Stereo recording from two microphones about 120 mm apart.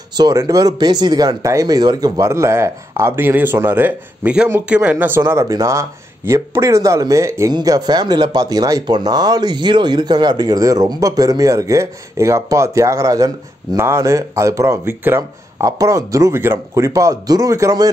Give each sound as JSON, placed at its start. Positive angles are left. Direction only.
{"t": 0.2, "sound": "speech", "side_deg": -30}
{"t": 7.5, "sound": "speech", "side_deg": -35}